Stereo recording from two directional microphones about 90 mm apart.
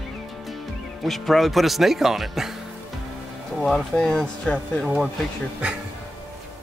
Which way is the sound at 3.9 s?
10° left (ahead or behind).